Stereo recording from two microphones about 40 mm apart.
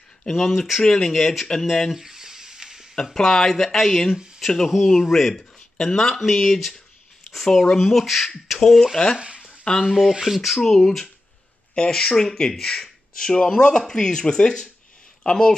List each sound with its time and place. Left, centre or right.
0.2 s speech: centre
1.9 s a sound: centre
3.2 s speech: centre
8.9 s speech: centre
9.8 s speech: centre
10.5 s speech: centre
11.7 s speech: centre